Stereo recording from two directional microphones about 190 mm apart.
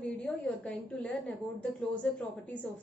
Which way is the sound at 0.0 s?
5° left (ahead or behind).